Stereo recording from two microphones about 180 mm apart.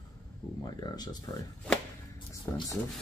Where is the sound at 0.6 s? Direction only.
20° left (ahead or behind).